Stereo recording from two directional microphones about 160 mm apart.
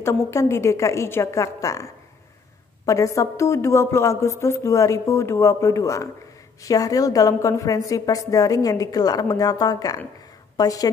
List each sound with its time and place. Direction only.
0.0 s a woman's voice: 15° left (ahead or behind)